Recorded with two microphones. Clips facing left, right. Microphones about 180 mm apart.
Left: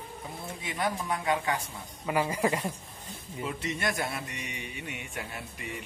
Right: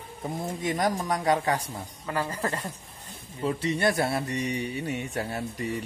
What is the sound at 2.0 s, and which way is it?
Speech, 10° left (ahead or behind).